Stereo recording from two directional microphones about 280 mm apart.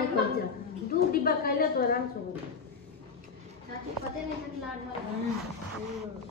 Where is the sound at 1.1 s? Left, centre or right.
Left.